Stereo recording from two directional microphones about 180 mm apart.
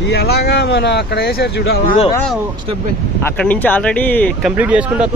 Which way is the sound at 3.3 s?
10° left (ahead or behind).